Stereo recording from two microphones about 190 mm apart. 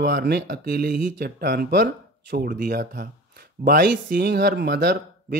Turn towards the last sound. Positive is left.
turn(degrees=-55)  # may be behind; listen again after turning